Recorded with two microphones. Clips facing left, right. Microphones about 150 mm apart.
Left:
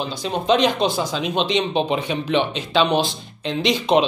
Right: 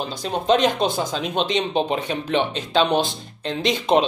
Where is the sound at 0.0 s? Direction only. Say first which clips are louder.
Left 1 dB; 45° right (ahead or behind).